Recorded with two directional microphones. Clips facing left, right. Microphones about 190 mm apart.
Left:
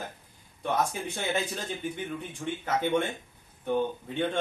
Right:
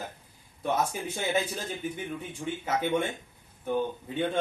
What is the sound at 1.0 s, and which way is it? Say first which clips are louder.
A man's voice: right 1 dB; 10° right (ahead or behind).